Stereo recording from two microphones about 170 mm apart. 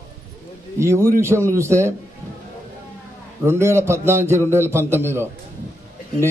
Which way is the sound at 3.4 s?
15° right (ahead or behind).